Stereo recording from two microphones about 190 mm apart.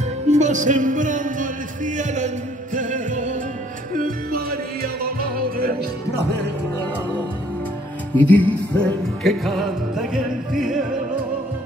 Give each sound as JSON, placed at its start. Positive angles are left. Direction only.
{"t": 0.3, "sound": "music", "side_deg": -40}
{"t": 8.2, "sound": "music", "side_deg": 10}